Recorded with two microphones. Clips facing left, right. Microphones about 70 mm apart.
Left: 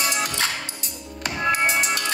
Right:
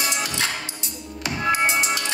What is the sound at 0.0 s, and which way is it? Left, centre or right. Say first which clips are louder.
Music: left 1 dB; left.